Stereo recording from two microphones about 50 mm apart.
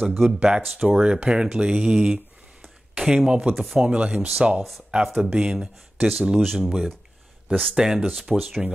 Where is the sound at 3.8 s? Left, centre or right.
Right.